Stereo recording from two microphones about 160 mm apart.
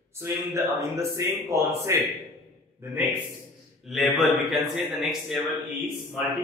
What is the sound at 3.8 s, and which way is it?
A man's voice, centre (ahead or behind).